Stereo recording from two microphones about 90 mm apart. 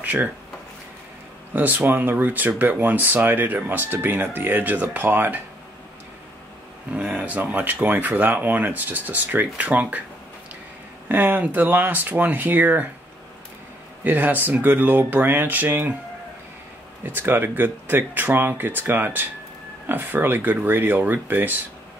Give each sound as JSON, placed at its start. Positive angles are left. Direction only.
{"t": 0.0, "sound": "speech", "side_deg": -20}
{"t": 1.5, "sound": "speech", "side_deg": -15}
{"t": 6.9, "sound": "speech", "side_deg": -15}
{"t": 11.1, "sound": "speech", "side_deg": -20}
{"t": 14.0, "sound": "speech", "side_deg": -20}
{"t": 17.0, "sound": "speech", "side_deg": -20}